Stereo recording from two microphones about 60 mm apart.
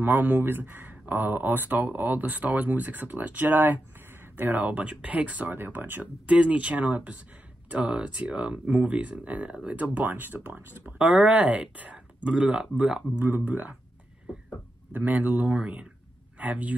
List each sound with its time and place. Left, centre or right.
0.0 s speech: right
11.0 s speech: centre
13.2 s speech: right
14.9 s speech: right